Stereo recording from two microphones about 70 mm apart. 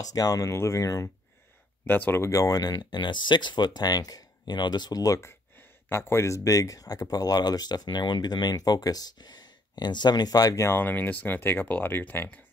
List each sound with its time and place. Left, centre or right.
0.0 s speech: left
0.5 s speech: left
1.9 s speech: left
2.2 s speech: left
5.2 s speech: left
10.5 s speech: left
10.8 s speech: left